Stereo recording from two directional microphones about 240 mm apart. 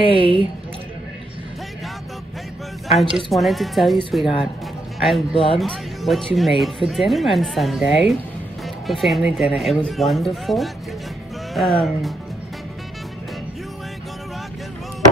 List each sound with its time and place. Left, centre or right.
0.0 s speech: left
3.0 s speech: centre
5.3 s speech: left
5.6 s speech: centre